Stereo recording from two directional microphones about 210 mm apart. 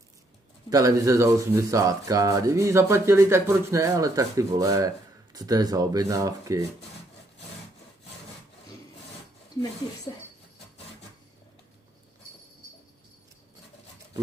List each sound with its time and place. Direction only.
0.7 s speech: 15° right (ahead or behind)